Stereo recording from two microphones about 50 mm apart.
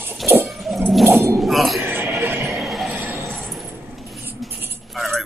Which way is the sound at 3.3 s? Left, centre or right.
Centre.